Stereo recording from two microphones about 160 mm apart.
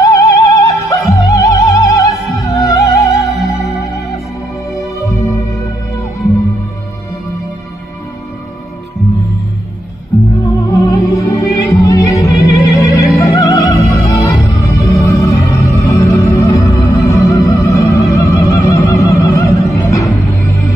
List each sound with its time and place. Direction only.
0.0 s opera: 20° left (ahead or behind)
1.1 s music: 20° left (ahead or behind)
4.6 s music: centre (ahead or behind)
4.9 s music: 20° left (ahead or behind)
10.4 s music: 20° left (ahead or behind)